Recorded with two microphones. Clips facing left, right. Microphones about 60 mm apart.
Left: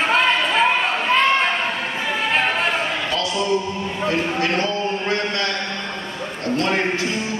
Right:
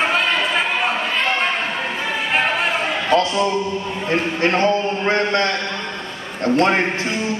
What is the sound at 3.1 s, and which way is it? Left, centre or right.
A man's voice, right.